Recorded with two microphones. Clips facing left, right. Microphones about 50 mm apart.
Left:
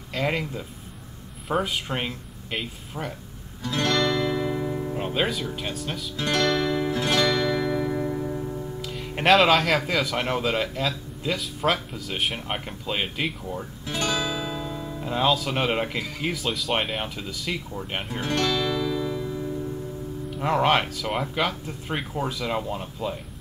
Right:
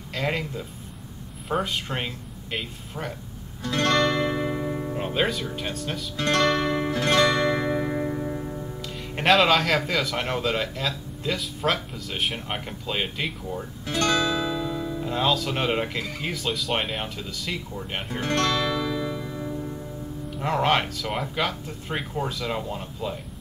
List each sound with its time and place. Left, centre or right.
0.1 s speech: centre
3.8 s music: right
4.1 s music: right
4.9 s speech: centre
6.2 s guitar: right
7.1 s music: right
7.6 s music: right
8.8 s speech: centre
14.4 s speech: centre
18.3 s music: right
18.7 s music: centre
20.2 s speech: centre